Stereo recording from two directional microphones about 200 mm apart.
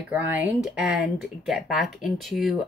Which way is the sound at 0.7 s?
Centre (ahead or behind).